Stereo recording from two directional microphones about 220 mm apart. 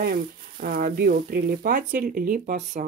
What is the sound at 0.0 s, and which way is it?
Speech, 40° right (ahead or behind).